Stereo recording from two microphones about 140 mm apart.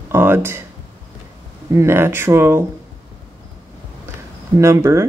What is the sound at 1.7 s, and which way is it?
Speech, 20° right (ahead or behind).